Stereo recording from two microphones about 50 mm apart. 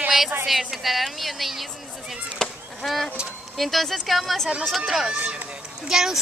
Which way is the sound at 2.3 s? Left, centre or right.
Centre.